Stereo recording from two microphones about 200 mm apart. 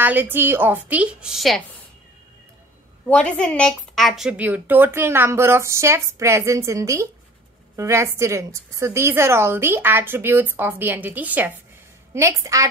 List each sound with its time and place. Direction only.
0.0 s a woman's voice: 10° right (ahead or behind)
3.1 s a woman's voice: 5° left (ahead or behind); by 12.6 s 15° right (ahead or behind)